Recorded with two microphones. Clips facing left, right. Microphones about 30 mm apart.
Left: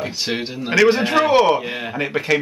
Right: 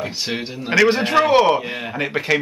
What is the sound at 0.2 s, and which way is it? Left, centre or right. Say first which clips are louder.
A man's voice: left 2 dB; centre.